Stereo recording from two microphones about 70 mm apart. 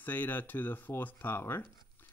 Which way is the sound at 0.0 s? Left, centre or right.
Left.